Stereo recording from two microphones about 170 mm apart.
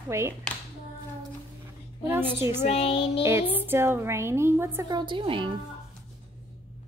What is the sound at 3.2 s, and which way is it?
A woman's voice, 15° right (ahead or behind).